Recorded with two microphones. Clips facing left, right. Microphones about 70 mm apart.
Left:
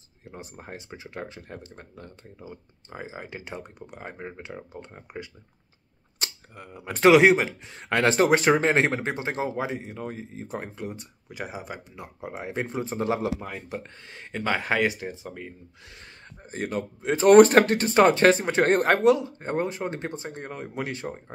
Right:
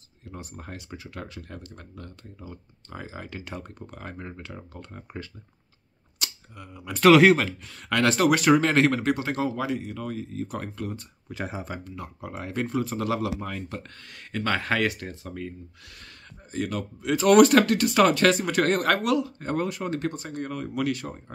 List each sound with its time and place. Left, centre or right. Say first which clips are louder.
0.2 s speech: right 1 dB; left
6.1 s a sound: left 1 dB; left
7.1 s speech: even; centre
11.9 s speech: right 1 dB; left
13.4 s speech: right 1 dB; centre
16.5 s speech: even; left